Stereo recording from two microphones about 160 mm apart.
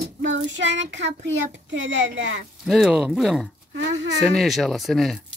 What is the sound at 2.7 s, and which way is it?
Speech, centre (ahead or behind).